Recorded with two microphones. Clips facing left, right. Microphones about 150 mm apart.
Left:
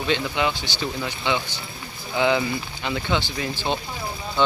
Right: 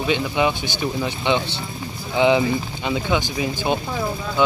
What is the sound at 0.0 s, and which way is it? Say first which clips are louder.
Speech: right 3 dB; 15° right (ahead or behind).